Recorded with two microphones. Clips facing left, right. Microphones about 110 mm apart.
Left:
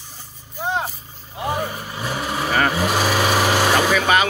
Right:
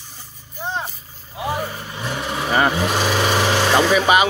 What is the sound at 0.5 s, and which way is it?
Speech, 10° left (ahead or behind).